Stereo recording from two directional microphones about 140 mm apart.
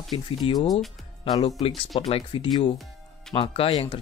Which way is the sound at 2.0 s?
40° left (ahead or behind).